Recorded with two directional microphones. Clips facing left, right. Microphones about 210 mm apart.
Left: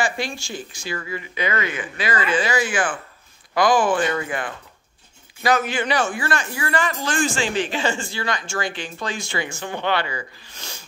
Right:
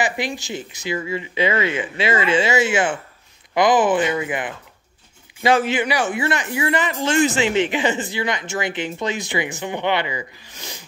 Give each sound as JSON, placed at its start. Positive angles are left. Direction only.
{"t": 0.0, "sound": "speech", "side_deg": -20}